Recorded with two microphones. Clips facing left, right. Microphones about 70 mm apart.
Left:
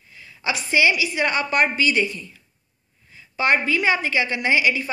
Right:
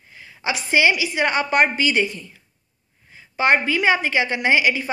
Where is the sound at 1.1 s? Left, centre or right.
Right.